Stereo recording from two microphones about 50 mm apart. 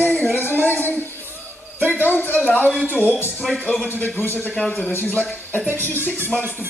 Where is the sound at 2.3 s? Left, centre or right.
Left.